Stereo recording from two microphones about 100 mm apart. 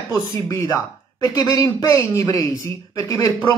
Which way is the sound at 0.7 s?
35° left (ahead or behind).